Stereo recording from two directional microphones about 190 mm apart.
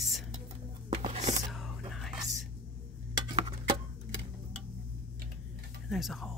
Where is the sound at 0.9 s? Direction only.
35° right (ahead or behind).